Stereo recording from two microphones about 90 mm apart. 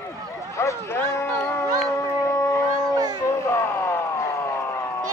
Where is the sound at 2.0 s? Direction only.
35° left (ahead or behind).